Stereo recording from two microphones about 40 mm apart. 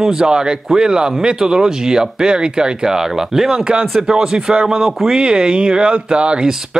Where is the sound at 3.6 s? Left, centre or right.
Right.